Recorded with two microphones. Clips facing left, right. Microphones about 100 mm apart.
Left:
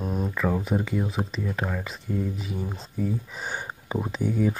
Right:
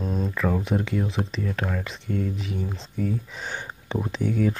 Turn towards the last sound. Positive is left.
turn(degrees=10)  # may be behind; listen again after turning